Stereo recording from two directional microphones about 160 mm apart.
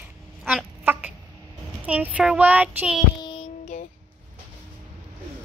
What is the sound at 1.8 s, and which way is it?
Speech, 10° right (ahead or behind).